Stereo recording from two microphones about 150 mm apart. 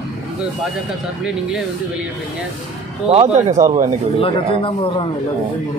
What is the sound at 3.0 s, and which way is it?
Speech, 45° right (ahead or behind).